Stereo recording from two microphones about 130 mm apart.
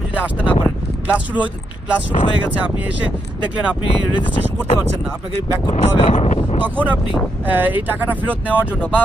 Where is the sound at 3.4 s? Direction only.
10° right (ahead or behind).